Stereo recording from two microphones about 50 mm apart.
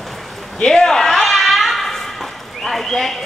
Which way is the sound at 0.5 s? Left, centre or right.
Centre.